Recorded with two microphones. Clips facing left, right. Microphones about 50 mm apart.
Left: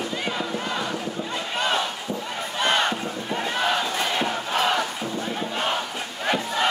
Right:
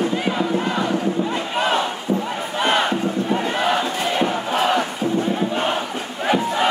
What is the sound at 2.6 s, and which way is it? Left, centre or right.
Battle cry, centre.